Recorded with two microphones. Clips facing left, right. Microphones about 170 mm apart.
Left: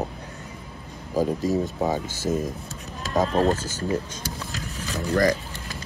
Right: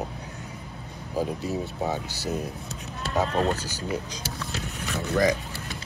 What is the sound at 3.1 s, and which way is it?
Speech, 40° left (ahead or behind).